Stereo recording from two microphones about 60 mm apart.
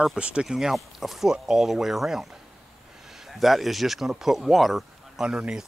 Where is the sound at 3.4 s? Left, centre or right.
Centre.